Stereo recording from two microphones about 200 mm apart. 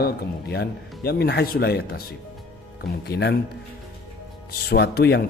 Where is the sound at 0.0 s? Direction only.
50° left (ahead or behind).